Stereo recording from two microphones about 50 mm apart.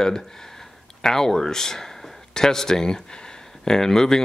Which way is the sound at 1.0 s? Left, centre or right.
Centre.